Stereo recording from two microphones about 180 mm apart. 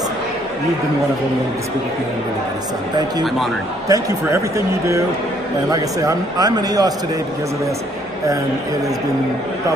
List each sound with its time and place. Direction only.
3.9 s a man's voice: 15° right (ahead or behind)